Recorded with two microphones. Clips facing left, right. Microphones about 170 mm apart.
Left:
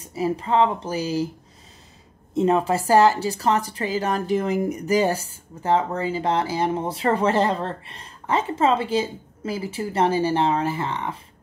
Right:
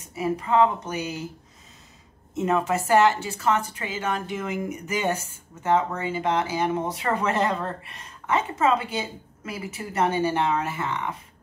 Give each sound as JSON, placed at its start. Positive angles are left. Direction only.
{"t": 0.0, "sound": "speech", "side_deg": 30}
{"t": 2.3, "sound": "speech", "side_deg": 30}